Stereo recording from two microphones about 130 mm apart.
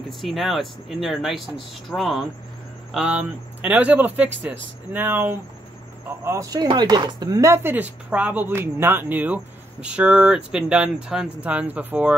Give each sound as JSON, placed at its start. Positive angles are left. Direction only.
{"t": 0.2, "sound": "speech", "side_deg": 0}